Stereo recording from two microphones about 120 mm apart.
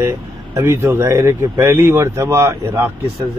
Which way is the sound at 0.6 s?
20° right (ahead or behind).